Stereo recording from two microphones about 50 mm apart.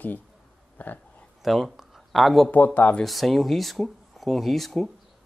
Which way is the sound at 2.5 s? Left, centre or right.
Left.